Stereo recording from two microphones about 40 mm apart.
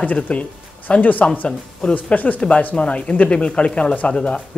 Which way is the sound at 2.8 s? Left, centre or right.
Left.